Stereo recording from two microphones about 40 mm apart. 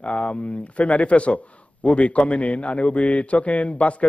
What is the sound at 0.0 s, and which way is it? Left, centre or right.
Speech, left.